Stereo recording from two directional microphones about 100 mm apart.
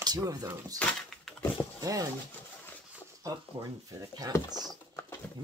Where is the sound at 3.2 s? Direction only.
35° right (ahead or behind).